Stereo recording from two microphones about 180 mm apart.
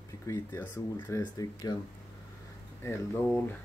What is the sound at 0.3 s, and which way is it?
Speech, 10° left (ahead or behind).